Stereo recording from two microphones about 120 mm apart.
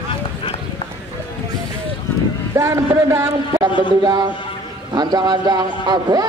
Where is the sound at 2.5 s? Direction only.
30° right (ahead or behind).